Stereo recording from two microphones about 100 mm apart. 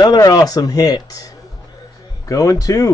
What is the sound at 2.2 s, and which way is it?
Speech, 35° left (ahead or behind).